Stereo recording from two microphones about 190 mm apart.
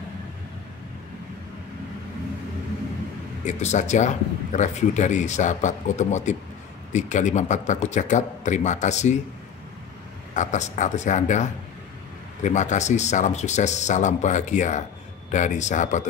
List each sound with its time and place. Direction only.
3.4 s speech: 40° left (ahead or behind)
10.3 s speech: 40° left (ahead or behind)